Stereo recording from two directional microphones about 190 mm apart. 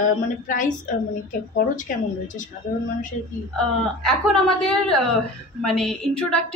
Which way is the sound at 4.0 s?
5° left (ahead or behind).